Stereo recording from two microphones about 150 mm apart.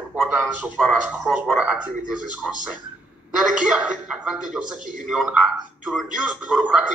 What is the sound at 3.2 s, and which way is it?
A man's voice, 5° right (ahead or behind).